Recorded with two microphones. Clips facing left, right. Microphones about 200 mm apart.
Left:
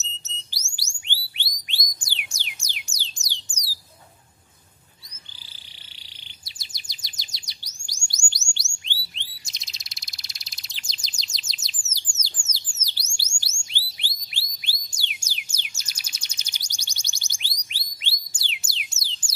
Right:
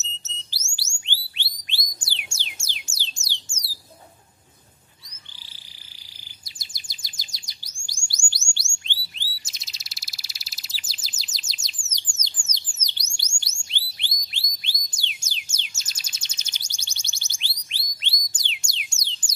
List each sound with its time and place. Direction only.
0.2 s music: 15° left (ahead or behind)
6.4 s chirp: 20° left (ahead or behind)
8.3 s music: 20° left (ahead or behind)
9.1 s bird: 5° right (ahead or behind)
15.7 s chirp: 10° left (ahead or behind)